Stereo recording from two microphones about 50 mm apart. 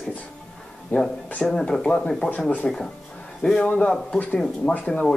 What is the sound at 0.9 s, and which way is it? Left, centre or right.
Speech, left.